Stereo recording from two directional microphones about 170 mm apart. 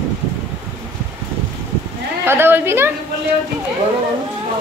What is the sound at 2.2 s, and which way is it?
Speech, 15° right (ahead or behind).